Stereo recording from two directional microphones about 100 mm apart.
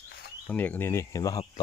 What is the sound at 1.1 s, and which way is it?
Speech, 35° left (ahead or behind).